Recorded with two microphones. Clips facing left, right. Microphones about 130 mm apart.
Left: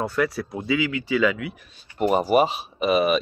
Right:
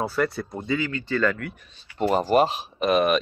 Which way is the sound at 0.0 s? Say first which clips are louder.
Left 1 dB; centre (ahead or behind).